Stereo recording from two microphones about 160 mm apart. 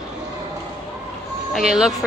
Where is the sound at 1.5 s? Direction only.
5° right (ahead or behind).